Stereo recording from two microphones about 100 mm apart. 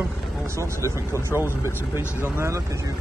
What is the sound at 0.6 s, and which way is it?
A man's voice, 30° right (ahead or behind).